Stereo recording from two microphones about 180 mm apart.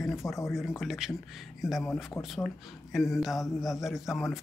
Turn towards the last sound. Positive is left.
turn(degrees=0)  # may be behind; listen again after turning